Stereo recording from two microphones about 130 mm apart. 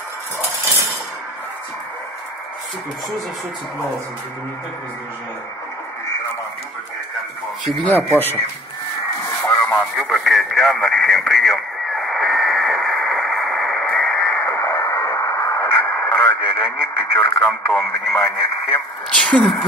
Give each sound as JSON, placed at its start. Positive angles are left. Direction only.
{"t": 9.4, "sound": "radio", "side_deg": 15}
{"t": 9.9, "sound": "radio", "side_deg": 0}
{"t": 18.1, "sound": "speech", "side_deg": 20}
{"t": 19.0, "sound": "a woman's voice", "side_deg": 10}